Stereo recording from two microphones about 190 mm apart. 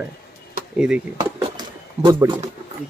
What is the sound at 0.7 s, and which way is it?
Speech, 5° right (ahead or behind).